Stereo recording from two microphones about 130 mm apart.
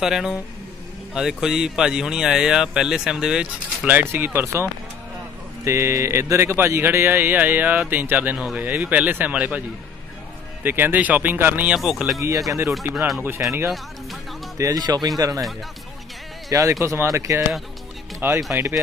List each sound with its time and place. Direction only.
0.0 s speech: 5° right (ahead or behind)
10.6 s speech: 15° right (ahead or behind)
12.4 s speech: 25° right (ahead or behind)
12.9 s speech: centre (ahead or behind)
13.4 s speech: 20° right (ahead or behind)
14.6 s speech: 30° right (ahead or behind)
16.4 s speech: 25° right (ahead or behind)
18.5 s speech: 20° right (ahead or behind)